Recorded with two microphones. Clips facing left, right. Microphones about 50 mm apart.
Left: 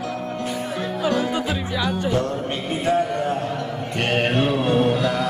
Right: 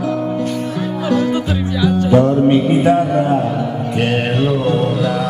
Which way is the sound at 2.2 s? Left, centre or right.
Centre.